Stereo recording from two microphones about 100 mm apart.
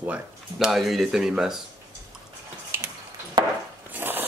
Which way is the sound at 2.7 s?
25° right (ahead or behind).